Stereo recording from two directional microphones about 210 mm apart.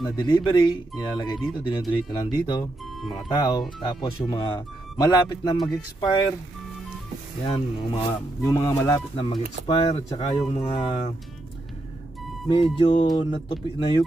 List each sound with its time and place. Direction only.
0.0 s speech: 20° left (ahead or behind)
7.4 s speech: 25° left (ahead or behind)
12.4 s speech: 25° left (ahead or behind)